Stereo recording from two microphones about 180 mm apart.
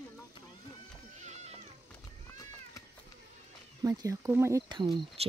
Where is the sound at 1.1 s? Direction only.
40° right (ahead or behind).